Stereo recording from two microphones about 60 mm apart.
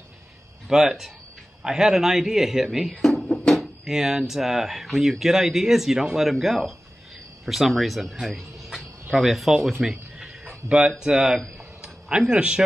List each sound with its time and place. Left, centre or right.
0.7 s a man's voice: centre
2.9 s music: centre
3.3 s a man's voice: centre
11.5 s a sound: centre
12.2 s a man's voice: centre